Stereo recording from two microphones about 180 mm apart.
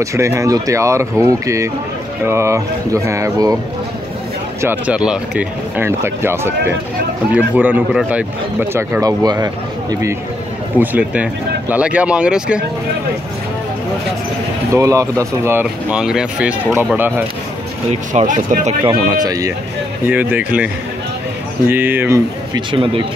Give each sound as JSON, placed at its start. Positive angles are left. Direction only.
{"t": 0.0, "sound": "speech", "side_deg": -15}
{"t": 4.6, "sound": "speech", "side_deg": -10}
{"t": 10.8, "sound": "speech", "side_deg": -10}
{"t": 14.7, "sound": "speech", "side_deg": -15}
{"t": 18.1, "sound": "speech", "side_deg": -45}
{"t": 19.2, "sound": "speech", "side_deg": -20}